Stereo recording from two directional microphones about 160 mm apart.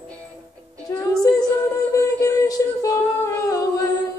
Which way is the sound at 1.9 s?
20° left (ahead or behind).